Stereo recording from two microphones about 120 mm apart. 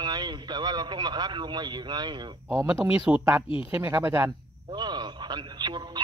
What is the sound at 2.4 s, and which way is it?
Speech, 20° right (ahead or behind).